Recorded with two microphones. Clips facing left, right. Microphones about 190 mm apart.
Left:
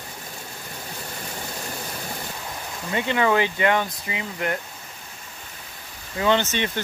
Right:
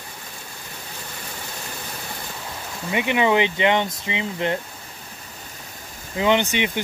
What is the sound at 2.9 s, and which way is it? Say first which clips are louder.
Speech: right 2 dB; 15° right (ahead or behind).